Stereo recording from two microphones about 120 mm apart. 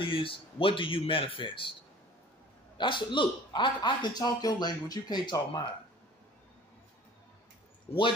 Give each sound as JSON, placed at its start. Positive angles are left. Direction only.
{"t": 0.0, "sound": "speech", "side_deg": 45}
{"t": 2.8, "sound": "speech", "side_deg": 40}